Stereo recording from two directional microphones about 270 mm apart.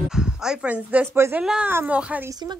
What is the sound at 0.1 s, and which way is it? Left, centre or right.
A woman's voice, centre.